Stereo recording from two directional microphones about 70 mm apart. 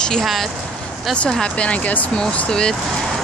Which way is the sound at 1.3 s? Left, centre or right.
Centre.